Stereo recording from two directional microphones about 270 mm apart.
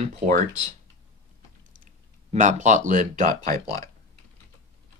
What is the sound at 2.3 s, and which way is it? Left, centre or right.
Speech, right.